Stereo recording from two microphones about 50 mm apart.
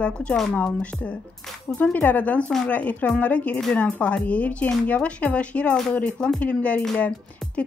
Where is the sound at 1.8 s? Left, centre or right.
Left.